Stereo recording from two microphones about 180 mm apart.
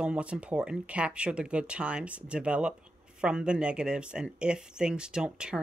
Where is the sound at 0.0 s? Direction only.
5° right (ahead or behind).